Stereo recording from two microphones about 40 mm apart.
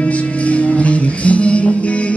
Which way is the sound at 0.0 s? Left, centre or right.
Left.